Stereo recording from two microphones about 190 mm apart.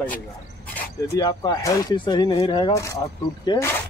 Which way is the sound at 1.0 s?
20° left (ahead or behind).